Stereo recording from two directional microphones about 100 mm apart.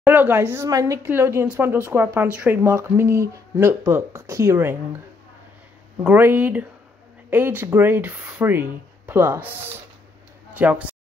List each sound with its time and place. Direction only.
0.0 s speech: 20° right (ahead or behind)
0.7 s a woman's voice: 35° right (ahead or behind)
1.0 s speech: 25° right (ahead or behind)
6.0 s speech: 20° right (ahead or behind)